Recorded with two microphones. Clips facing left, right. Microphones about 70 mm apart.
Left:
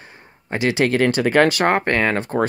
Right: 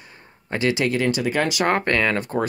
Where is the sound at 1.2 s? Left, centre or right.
Left.